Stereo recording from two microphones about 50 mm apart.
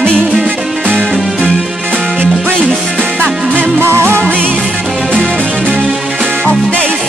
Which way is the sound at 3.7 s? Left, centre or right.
Right.